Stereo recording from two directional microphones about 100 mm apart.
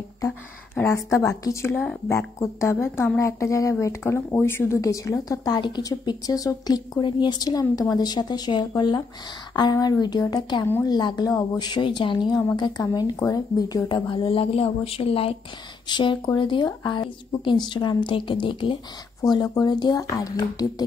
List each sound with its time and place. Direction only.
0.8 s a woman's voice: 30° left (ahead or behind)
10.6 s a woman's voice: 30° left (ahead or behind)
10.9 s a woman's voice: 45° left (ahead or behind)
13.8 s speech: 55° left (ahead or behind); by 15.3 s 70° left (ahead or behind)
15.9 s a woman's voice: 55° left (ahead or behind)
19.2 s speech: 40° left (ahead or behind)